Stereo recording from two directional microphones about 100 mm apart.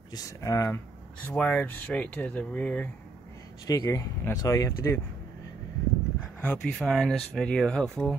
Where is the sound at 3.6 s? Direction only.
35° left (ahead or behind).